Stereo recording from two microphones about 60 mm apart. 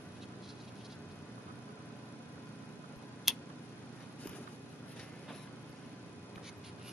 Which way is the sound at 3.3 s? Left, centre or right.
Centre.